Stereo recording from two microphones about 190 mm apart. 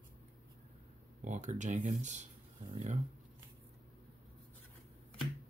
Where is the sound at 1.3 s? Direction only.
40° right (ahead or behind).